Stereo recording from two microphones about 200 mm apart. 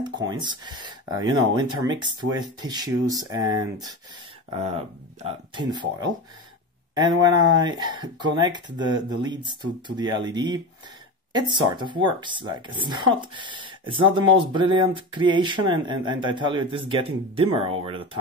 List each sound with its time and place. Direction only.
0.3 s speech: 20° right (ahead or behind)
4.5 s speech: 30° right (ahead or behind)
7.0 s speech: 20° right (ahead or behind)